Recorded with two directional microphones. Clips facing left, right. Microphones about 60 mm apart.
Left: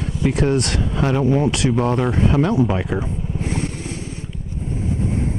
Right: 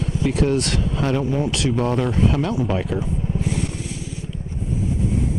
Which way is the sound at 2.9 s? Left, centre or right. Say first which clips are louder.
Even; left.